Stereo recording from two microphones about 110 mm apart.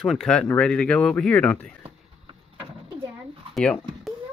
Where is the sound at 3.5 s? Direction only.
5° left (ahead or behind).